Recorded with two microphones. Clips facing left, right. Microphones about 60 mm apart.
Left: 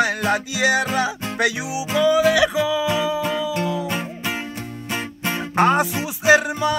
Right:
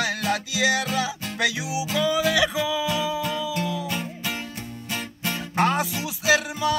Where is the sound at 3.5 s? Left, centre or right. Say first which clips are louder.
Left 4 dB; left.